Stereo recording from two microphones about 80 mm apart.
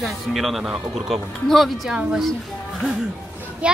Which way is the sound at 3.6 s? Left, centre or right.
Centre.